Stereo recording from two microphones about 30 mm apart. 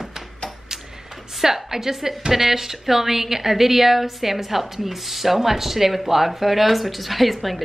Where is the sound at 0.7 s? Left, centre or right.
Centre.